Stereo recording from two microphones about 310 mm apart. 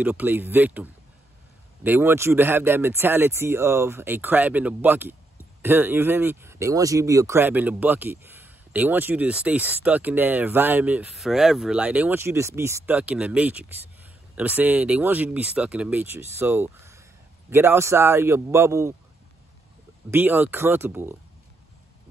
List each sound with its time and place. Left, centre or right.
0.0 s speech: centre
20.1 s speech: centre